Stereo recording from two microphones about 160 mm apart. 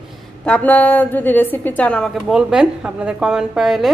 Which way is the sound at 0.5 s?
10° left (ahead or behind).